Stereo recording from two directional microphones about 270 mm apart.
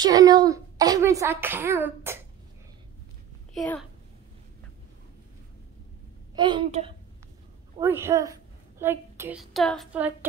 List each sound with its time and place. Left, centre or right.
0.0 s a child's voice: centre
3.5 s a child's voice: centre
6.3 s a child's voice: centre
7.8 s a woman's voice: centre